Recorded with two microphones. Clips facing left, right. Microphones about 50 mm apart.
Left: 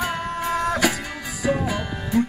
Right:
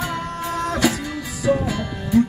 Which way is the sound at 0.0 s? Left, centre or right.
Centre.